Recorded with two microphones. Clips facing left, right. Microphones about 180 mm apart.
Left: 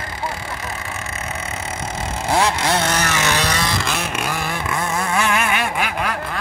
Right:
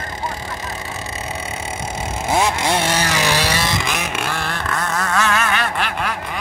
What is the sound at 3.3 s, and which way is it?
Vehicle, 5° right (ahead or behind).